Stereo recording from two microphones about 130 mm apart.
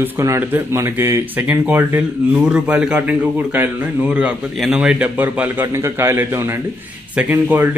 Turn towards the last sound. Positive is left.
turn(degrees=-15)  # may be behind; listen again after turning